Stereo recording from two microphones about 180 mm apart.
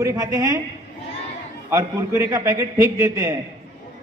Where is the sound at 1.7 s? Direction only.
15° right (ahead or behind).